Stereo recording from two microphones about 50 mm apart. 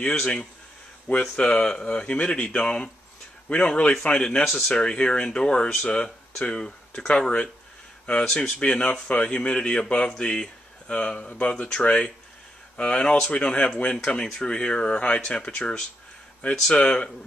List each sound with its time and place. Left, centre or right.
0.1 s speech: centre
4.5 s speech: centre
4.7 s speech: centre
8.3 s speech: centre
8.5 s speech: left